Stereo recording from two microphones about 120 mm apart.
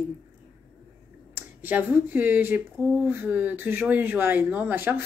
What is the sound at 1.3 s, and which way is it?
A woman's voice, 15° right (ahead or behind).